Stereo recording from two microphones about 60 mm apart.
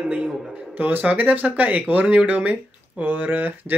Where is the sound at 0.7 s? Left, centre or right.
Right.